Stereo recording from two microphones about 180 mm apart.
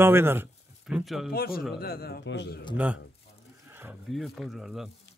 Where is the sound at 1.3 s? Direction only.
55° left (ahead or behind); by 2.6 s 75° left (ahead or behind).